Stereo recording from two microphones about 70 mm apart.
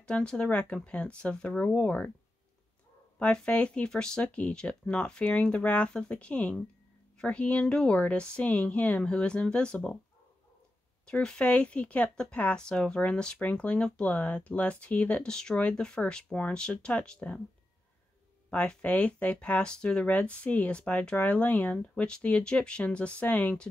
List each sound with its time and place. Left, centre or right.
0.0 s speech: centre
3.2 s speech: centre
11.1 s speech: centre
18.5 s speech: centre